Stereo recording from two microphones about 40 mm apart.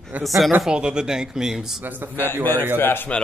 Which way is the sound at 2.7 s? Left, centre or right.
Left.